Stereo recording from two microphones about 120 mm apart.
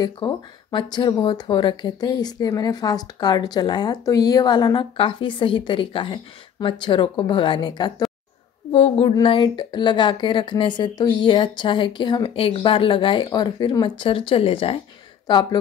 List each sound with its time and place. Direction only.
0.0 s speech: 35° left (ahead or behind)
8.7 s speech: 55° left (ahead or behind)
9.2 s speech: 45° left (ahead or behind)
15.2 s speech: 40° left (ahead or behind)